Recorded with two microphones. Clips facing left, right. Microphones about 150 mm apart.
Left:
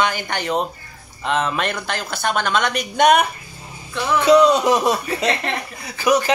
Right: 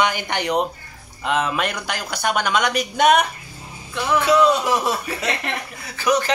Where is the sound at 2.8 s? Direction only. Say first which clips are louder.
Left 2 dB; centre (ahead or behind).